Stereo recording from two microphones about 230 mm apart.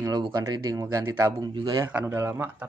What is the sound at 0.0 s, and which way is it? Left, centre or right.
Speech, centre.